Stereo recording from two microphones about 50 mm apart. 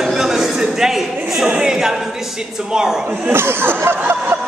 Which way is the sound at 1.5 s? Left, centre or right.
Centre.